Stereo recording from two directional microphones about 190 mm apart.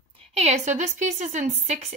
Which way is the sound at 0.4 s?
40° right (ahead or behind).